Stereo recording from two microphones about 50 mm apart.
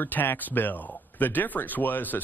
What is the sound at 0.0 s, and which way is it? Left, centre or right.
Speech, left.